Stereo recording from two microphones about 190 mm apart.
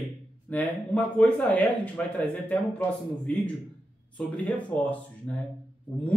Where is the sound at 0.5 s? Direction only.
10° left (ahead or behind).